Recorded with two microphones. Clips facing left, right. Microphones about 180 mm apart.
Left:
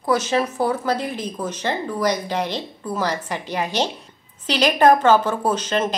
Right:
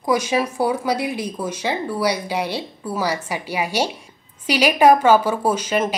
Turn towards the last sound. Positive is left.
turn(degrees=-10)  # may be behind; listen again after turning